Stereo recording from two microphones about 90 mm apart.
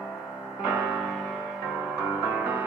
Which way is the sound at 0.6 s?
20° right (ahead or behind).